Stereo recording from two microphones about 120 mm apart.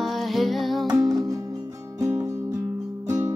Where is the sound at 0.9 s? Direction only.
30° right (ahead or behind).